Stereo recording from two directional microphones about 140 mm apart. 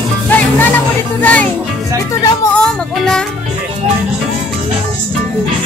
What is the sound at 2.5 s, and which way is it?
Music, 5° left (ahead or behind).